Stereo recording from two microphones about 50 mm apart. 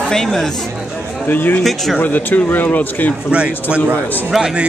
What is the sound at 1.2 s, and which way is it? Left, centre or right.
Speech, left.